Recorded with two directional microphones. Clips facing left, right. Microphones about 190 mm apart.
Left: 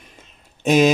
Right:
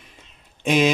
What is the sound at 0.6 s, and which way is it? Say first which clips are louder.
Speech: left 4 dB; 40° left (ahead or behind).